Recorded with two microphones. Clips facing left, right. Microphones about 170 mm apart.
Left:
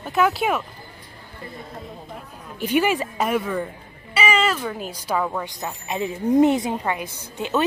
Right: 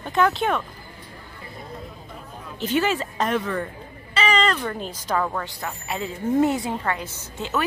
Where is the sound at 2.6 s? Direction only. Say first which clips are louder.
Left 2 dB; 10° left (ahead or behind).